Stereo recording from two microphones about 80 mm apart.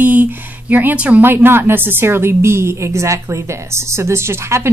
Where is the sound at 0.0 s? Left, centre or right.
Right.